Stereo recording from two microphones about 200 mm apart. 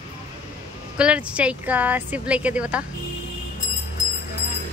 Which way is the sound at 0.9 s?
5° right (ahead or behind).